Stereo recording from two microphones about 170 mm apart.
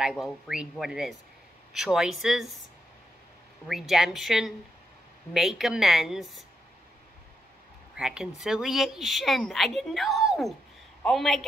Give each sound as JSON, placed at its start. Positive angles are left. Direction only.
{"t": 0.0, "sound": "a woman's voice", "side_deg": 0}
{"t": 3.6, "sound": "a woman's voice", "side_deg": 0}
{"t": 7.9, "sound": "a woman's voice", "side_deg": -5}